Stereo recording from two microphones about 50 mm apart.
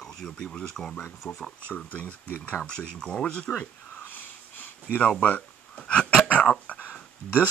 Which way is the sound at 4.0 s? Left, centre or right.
Left.